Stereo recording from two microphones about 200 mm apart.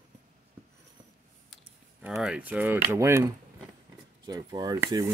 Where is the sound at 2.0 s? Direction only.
5° right (ahead or behind).